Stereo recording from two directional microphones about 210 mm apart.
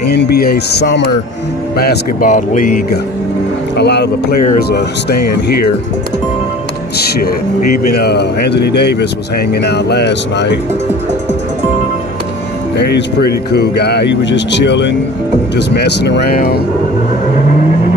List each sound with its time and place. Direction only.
0.1 s speech: 50° left (ahead or behind)
3.7 s speech: 50° left (ahead or behind)
7.0 s speech: 50° left (ahead or behind)
12.7 s speech: 50° left (ahead or behind)